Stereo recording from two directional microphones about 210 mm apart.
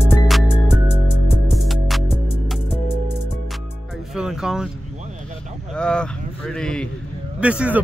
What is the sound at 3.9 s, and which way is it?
Music, centre (ahead or behind).